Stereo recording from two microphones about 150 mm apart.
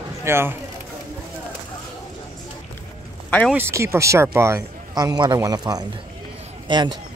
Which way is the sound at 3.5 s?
15° right (ahead or behind).